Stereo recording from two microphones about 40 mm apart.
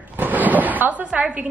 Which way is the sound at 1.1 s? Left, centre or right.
Right.